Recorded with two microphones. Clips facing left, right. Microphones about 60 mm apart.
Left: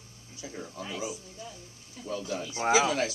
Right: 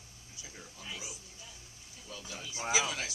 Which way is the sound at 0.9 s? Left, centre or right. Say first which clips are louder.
Left 9 dB; left.